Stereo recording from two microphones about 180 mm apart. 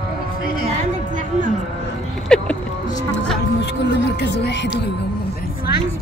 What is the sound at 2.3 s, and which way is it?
Vehicle, 5° left (ahead or behind).